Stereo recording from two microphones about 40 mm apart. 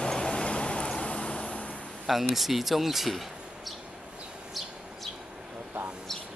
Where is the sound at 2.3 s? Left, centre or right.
Centre.